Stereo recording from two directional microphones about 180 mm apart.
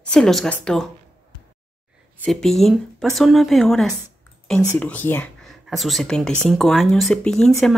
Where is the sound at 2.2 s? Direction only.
Centre (ahead or behind).